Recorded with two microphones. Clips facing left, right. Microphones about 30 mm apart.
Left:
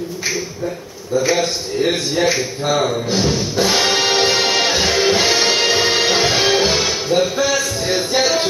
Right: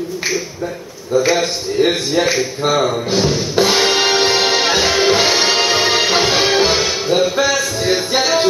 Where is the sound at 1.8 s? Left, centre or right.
Centre.